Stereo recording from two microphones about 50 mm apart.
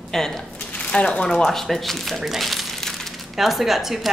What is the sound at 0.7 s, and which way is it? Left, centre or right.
Speech, left.